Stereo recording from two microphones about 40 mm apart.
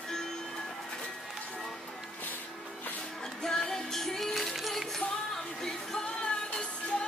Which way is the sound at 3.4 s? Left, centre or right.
Centre.